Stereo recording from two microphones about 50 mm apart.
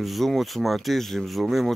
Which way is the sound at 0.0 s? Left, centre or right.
Centre.